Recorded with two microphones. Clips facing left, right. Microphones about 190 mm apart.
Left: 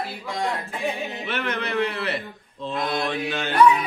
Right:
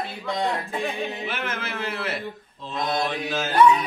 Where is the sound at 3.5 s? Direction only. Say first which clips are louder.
Even; 25° right (ahead or behind).